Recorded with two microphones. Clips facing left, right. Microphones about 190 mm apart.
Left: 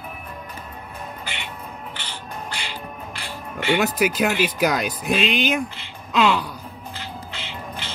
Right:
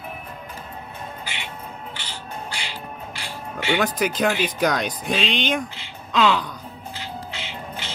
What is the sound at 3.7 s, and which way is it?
Speech, 5° left (ahead or behind).